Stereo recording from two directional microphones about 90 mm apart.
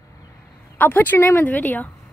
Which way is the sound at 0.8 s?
20° left (ahead or behind).